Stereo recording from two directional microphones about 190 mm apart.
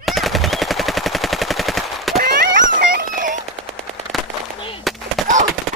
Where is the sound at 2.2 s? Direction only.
50° right (ahead or behind).